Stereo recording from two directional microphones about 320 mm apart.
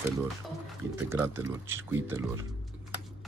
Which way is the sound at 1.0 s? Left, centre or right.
Centre.